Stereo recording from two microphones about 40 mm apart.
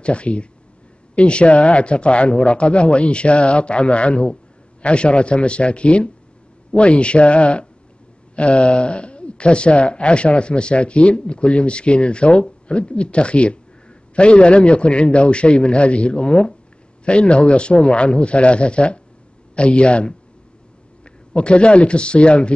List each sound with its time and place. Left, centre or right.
0.0 s a man's voice: left